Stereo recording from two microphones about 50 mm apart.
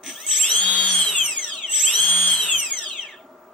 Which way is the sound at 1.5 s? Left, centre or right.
Centre.